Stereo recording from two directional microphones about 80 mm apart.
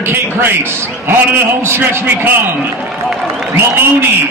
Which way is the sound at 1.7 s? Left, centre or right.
Right.